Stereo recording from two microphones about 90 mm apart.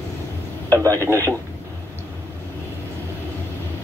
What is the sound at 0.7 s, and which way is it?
Speech, 35° right (ahead or behind).